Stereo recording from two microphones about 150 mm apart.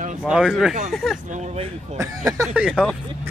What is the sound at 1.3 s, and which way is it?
Speech, 50° right (ahead or behind).